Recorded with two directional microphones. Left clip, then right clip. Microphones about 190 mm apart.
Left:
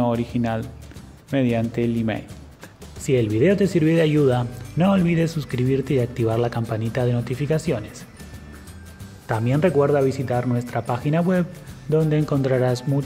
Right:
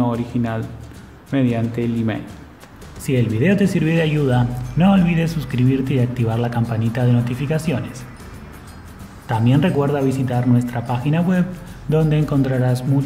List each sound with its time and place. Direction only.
0.0 s a man's voice: 35° left (ahead or behind)
3.3 s a man's voice: 35° left (ahead or behind)
9.5 s a man's voice: 30° left (ahead or behind)